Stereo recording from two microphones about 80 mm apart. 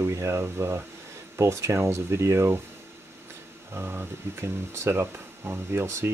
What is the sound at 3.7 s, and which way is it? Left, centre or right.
Speech, right.